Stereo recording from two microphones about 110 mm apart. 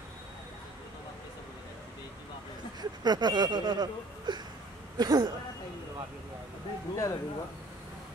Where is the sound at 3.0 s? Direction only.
40° right (ahead or behind).